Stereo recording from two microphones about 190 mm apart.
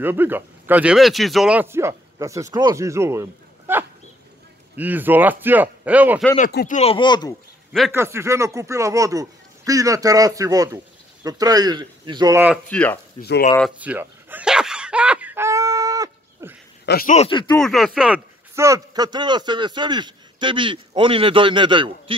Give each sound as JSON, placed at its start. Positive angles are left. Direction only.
{"t": 0.0, "sound": "a man's voice", "side_deg": -10}
{"t": 6.7, "sound": "speech", "side_deg": 30}
{"t": 7.9, "sound": "speech", "side_deg": -15}
{"t": 12.6, "sound": "speech", "side_deg": 10}
{"t": 13.2, "sound": "speech", "side_deg": 55}
{"t": 13.6, "sound": "a sound", "side_deg": -5}
{"t": 16.8, "sound": "speech", "side_deg": 55}
{"t": 17.1, "sound": "speech", "side_deg": 30}
{"t": 17.6, "sound": "speech", "side_deg": 0}